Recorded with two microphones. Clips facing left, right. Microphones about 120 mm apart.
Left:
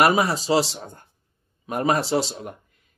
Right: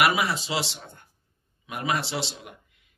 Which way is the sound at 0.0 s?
35° left (ahead or behind).